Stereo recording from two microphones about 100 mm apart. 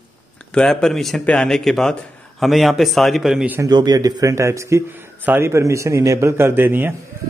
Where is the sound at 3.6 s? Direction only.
45° right (ahead or behind); by 6.9 s 20° right (ahead or behind).